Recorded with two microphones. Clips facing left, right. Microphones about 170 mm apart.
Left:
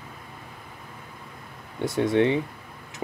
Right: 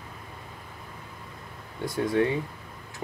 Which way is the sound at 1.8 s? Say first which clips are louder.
Left 3 dB; 25° left (ahead or behind).